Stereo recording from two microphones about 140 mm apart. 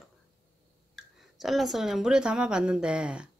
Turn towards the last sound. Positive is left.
turn(degrees=-5)  # may be behind; listen again after turning